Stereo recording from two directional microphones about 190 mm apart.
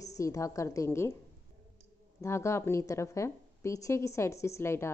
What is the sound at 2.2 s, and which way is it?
A woman's voice, 15° left (ahead or behind).